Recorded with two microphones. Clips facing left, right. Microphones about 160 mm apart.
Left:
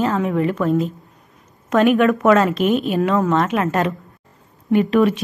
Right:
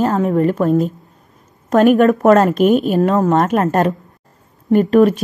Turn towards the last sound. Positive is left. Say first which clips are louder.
# right 4 dB
turn(degrees=-45)  # may be behind; listen again after turning